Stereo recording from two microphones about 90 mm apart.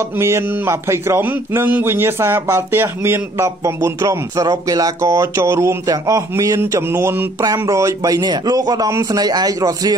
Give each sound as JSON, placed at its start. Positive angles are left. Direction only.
{"t": 0.0, "sound": "a man's voice", "side_deg": -30}